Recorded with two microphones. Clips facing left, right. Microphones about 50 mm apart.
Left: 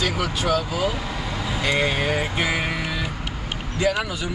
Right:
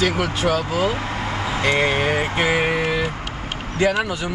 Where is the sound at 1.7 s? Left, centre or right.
Right.